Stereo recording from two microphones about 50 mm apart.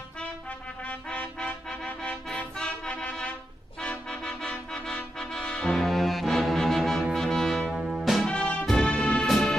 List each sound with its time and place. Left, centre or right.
0.8 s music: left
5.4 s brass instrument: left
5.7 s brass instrument: centre
7.2 s music: centre
7.7 s music: centre
8.3 s music: left